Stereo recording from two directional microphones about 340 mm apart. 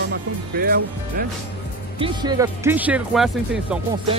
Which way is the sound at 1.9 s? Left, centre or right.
Centre.